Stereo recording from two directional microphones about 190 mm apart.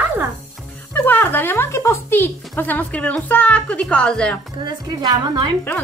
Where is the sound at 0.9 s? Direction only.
10° left (ahead or behind).